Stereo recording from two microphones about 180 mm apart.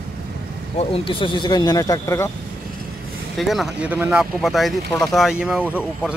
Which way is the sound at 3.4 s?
Centre (ahead or behind).